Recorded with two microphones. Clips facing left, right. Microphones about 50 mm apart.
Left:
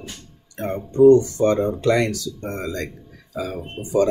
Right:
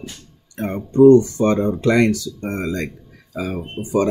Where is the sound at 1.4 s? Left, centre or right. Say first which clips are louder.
Right 1 dB; right.